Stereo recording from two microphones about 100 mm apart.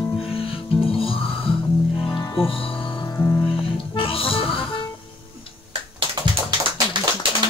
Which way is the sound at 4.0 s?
65° left (ahead or behind).